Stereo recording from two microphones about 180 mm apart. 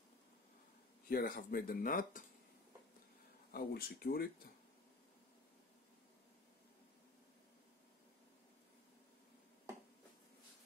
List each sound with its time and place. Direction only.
1.0 s speech: 55° left (ahead or behind)
3.5 s speech: 55° left (ahead or behind)